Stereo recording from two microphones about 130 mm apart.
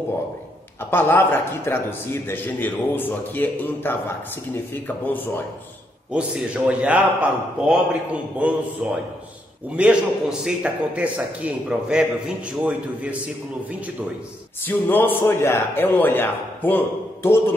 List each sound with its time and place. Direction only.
0.8 s a man's voice: 15° left (ahead or behind)
6.1 s a man's voice: 10° right (ahead or behind)
14.7 s a man's voice: 15° left (ahead or behind)